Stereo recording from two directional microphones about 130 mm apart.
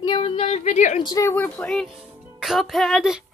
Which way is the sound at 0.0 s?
40° left (ahead or behind).